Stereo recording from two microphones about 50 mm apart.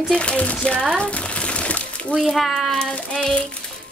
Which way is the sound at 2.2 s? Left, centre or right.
Centre.